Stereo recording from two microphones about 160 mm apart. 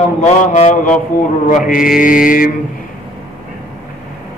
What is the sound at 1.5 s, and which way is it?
Mantra, 60° left (ahead or behind).